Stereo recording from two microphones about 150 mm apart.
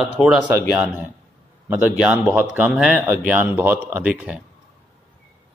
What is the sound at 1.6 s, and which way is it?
Speech, 10° right (ahead or behind).